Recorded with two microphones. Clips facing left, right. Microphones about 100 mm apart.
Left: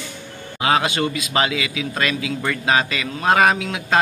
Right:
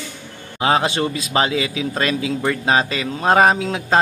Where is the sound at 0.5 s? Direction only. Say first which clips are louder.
Right 1 dB; 30° right (ahead or behind).